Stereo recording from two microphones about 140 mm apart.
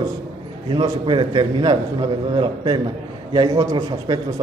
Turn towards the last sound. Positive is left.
turn(degrees=-25)  # may be behind; listen again after turning